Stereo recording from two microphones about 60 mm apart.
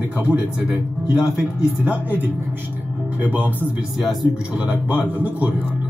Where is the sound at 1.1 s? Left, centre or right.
Centre.